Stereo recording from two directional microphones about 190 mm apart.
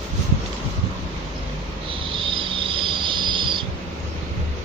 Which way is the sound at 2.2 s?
25° right (ahead or behind).